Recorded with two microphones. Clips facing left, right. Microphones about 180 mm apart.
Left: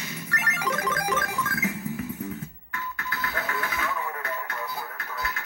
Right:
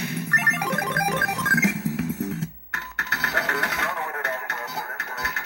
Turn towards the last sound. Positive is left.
turn(degrees=-75)  # may be behind; listen again after turning